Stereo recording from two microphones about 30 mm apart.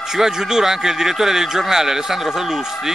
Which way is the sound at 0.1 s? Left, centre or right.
Centre.